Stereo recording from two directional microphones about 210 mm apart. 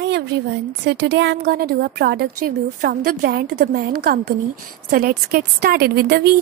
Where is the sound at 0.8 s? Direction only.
55° right (ahead or behind).